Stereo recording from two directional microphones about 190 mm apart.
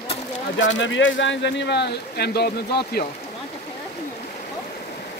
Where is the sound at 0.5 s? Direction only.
75° left (ahead or behind); by 3.0 s 55° left (ahead or behind).